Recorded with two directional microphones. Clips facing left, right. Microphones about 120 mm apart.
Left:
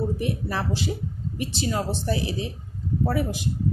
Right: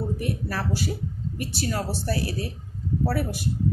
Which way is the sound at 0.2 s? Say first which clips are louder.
Left 1 dB; 20° left (ahead or behind).